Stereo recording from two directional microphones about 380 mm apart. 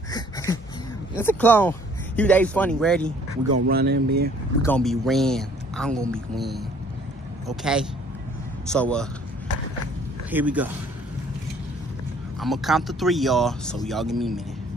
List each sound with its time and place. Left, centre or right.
0.1 s a sound: centre
1.1 s speech: centre
3.6 s speech: right
4.6 s a man's voice: centre
10.3 s a man's voice: centre
12.4 s a man's voice: centre